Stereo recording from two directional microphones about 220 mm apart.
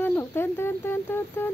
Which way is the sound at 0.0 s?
10° left (ahead or behind).